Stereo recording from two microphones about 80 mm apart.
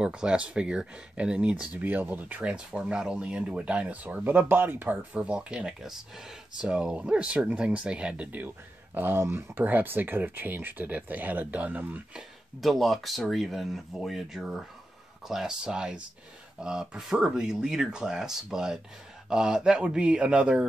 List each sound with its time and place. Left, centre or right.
0.0 s speech: centre
12.7 s speech: centre